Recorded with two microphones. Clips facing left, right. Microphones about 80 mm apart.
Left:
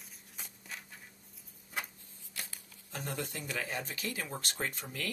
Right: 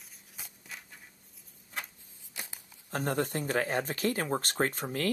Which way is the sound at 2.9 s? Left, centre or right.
Right.